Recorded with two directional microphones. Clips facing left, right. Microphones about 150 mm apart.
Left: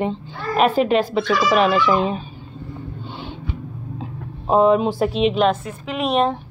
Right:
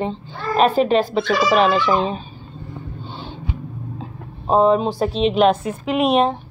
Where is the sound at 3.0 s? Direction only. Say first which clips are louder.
Left 1 dB; 15° left (ahead or behind).